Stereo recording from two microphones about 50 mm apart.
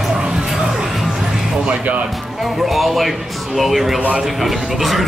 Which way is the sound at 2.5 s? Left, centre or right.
Centre.